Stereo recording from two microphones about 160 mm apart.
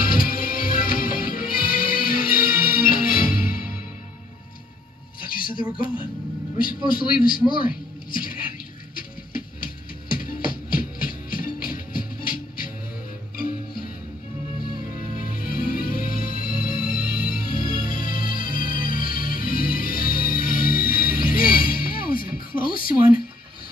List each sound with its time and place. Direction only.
0.0 s music: 60° left (ahead or behind)
5.2 s a sound: 60° left (ahead or behind)
6.6 s a man's voice: 60° left (ahead or behind)
7.5 s music: 60° left (ahead or behind)
15.0 s music: 60° left (ahead or behind)